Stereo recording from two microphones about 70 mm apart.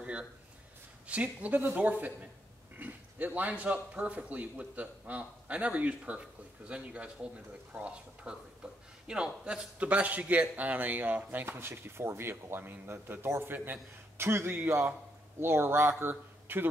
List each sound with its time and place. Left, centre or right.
0.0 s speech: centre
8.6 s a sound: centre
9.0 s speech: centre; by 16.6 s right